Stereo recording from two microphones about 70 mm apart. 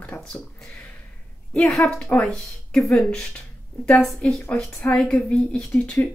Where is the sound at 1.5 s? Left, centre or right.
Centre.